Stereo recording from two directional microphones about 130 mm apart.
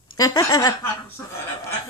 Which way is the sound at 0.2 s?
25° left (ahead or behind).